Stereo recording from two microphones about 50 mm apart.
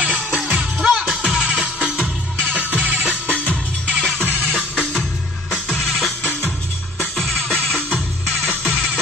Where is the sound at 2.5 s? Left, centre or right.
Right.